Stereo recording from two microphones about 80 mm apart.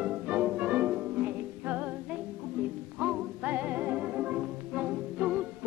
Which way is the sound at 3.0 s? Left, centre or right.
Centre.